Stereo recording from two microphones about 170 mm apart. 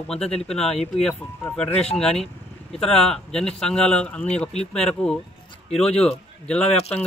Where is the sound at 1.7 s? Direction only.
35° left (ahead or behind).